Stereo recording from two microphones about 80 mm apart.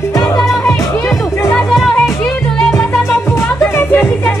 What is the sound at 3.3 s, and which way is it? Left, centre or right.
Music, left.